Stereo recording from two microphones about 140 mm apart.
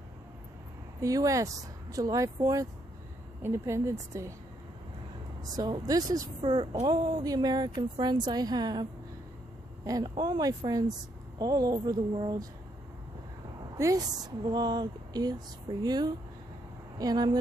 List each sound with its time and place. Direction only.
1.0 s speech: 25° right (ahead or behind)
5.4 s speech: 30° right (ahead or behind)
6.4 s a woman's voice: 35° right (ahead or behind)
9.8 s speech: 30° right (ahead or behind)
13.7 s speech: 25° right (ahead or behind)